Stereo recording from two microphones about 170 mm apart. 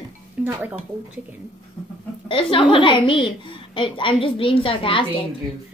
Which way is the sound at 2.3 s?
30° left (ahead or behind).